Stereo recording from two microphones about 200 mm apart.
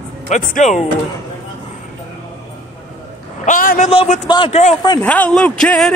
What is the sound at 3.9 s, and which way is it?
Speech, 30° left (ahead or behind).